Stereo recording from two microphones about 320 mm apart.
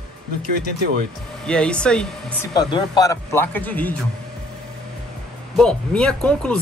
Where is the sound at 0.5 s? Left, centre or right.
Right.